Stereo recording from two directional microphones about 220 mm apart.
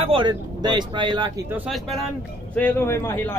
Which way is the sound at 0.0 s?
20° right (ahead or behind).